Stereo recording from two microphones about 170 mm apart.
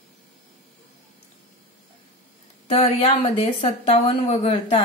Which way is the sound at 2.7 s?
35° left (ahead or behind).